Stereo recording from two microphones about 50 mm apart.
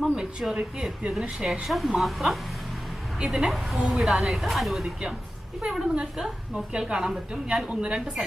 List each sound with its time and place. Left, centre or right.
0.5 s speech: centre
1.4 s speech: centre
5.6 s a woman's voice: centre